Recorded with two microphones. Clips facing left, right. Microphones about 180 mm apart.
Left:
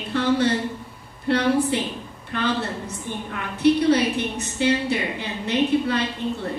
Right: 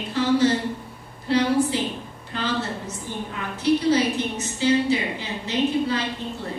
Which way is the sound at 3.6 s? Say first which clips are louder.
Left 2 dB; 60° left (ahead or behind).